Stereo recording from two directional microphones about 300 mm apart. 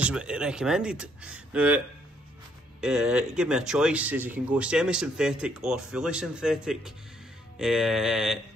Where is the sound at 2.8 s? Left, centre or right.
Centre.